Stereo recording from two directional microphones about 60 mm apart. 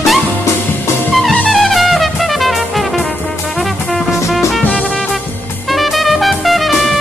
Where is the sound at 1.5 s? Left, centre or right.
Centre.